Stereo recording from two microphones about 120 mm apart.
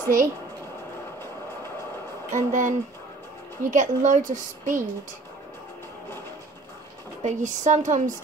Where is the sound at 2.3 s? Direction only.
90° right.